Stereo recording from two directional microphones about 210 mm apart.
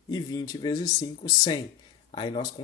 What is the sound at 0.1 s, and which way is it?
Speech, 15° left (ahead or behind).